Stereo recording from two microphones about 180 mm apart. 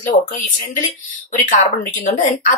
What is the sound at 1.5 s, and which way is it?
Speech, 45° left (ahead or behind).